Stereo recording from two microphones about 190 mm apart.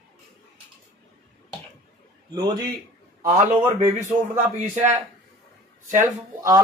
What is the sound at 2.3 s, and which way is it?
Speech, 20° right (ahead or behind).